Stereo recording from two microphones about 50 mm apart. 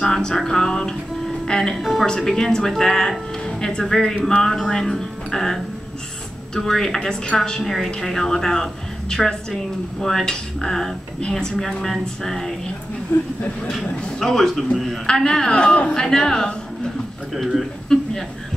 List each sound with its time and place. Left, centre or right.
0.0 s speech: centre
1.8 s a man's voice: centre
2.0 s speech: centre
7.6 s a man's voice: centre
13.1 s speech: left
14.2 s a man's voice: centre; by 15.9 s left
15.9 s speech: centre
17.3 s a man's voice: centre
17.9 s speech: centre